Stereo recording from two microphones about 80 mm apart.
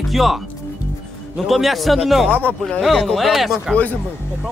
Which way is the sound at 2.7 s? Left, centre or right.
Centre.